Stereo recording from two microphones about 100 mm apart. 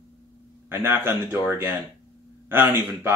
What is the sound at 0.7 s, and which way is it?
Speech, 20° right (ahead or behind).